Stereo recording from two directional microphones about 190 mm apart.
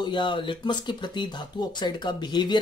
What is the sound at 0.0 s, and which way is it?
Speech, 25° left (ahead or behind).